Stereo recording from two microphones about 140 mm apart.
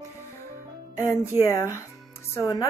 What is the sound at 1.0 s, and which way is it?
A woman's voice, 20° left (ahead or behind).